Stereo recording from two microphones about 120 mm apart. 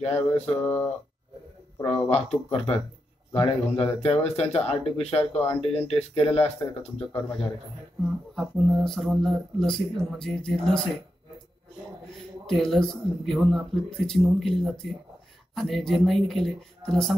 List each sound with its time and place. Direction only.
0.0 s a sound: 10° left (ahead or behind)
2.0 s speech: 55° left (ahead or behind)
3.3 s a man's voice: 55° left (ahead or behind)
6.6 s speech: 30° left (ahead or behind)
7.2 s a sound: 5° left (ahead or behind)
8.0 s speech: centre (ahead or behind)
12.4 s speech: 5° left (ahead or behind)